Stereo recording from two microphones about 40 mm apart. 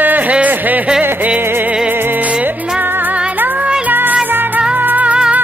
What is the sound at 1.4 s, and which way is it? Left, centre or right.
Music, right.